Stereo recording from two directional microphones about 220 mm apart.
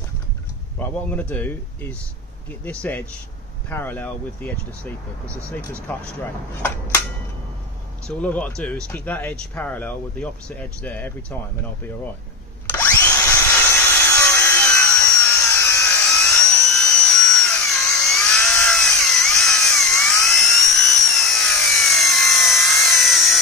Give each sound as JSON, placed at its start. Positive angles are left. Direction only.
{"t": 0.7, "sound": "speech", "side_deg": 10}
{"t": 8.1, "sound": "speech", "side_deg": 5}
{"t": 12.6, "sound": "tools", "side_deg": 10}